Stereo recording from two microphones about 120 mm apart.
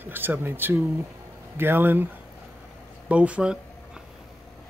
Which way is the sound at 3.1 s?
10° right (ahead or behind).